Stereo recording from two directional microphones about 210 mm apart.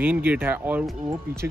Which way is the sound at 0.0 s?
5° right (ahead or behind).